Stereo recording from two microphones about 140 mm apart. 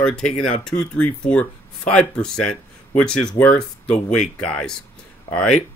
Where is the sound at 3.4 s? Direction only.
25° left (ahead or behind).